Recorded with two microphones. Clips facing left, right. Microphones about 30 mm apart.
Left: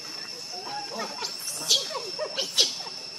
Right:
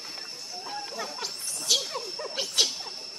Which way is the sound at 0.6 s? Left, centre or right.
Centre.